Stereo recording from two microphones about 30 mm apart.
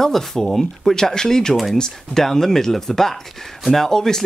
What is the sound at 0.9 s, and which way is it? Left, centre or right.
Speech, left.